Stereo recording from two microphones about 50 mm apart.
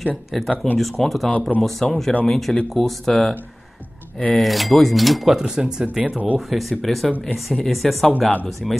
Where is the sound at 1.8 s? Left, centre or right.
Centre.